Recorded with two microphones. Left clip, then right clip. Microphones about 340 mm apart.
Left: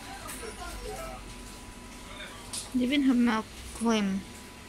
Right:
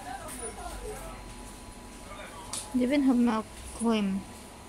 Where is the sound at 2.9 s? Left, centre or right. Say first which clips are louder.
Even; centre.